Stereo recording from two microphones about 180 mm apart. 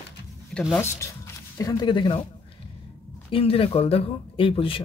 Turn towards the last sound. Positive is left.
turn(degrees=30)  # may be behind; listen again after turning